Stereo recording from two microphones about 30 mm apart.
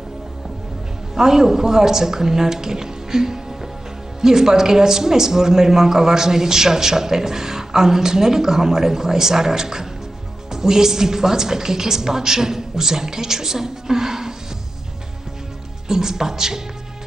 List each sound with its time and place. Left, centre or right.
1.1 s a man's voice: centre
15.9 s a man's voice: centre